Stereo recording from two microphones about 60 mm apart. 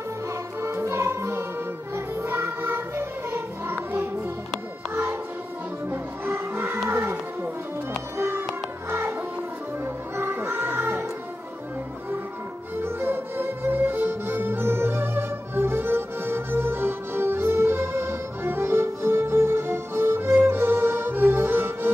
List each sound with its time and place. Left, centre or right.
0.6 s music: right
5.9 s music: right
6.9 s a sound: right
8.2 s a sound: right
10.1 s music: right
12.8 s music: right